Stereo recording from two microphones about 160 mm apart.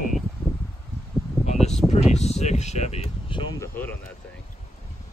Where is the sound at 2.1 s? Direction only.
45° left (ahead or behind).